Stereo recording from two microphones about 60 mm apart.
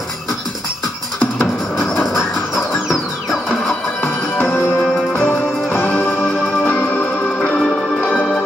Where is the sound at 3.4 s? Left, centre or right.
Left.